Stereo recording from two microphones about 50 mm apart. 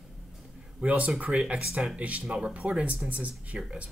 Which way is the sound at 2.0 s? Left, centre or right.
Right.